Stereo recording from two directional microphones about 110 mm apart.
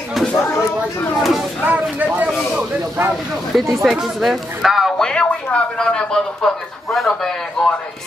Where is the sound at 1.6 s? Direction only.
15° right (ahead or behind).